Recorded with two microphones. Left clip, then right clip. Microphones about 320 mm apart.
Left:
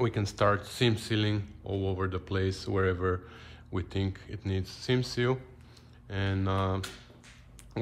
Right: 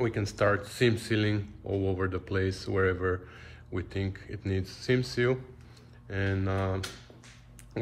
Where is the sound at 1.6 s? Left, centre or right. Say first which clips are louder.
Right 3 dB; left.